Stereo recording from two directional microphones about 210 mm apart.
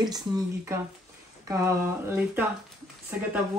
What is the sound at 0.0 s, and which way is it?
Speech, 20° right (ahead or behind).